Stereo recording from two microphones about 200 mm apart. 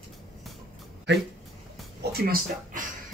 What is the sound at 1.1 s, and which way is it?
Speech, 60° right (ahead or behind).